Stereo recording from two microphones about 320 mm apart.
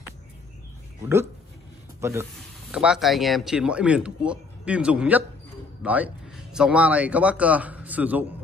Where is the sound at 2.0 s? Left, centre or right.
Centre.